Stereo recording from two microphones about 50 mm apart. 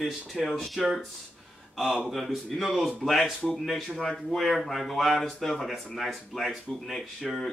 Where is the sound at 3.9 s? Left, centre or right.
Centre.